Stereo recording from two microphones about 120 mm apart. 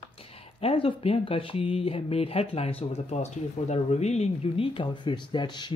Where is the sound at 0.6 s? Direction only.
55° left (ahead or behind); by 5.7 s 40° left (ahead or behind).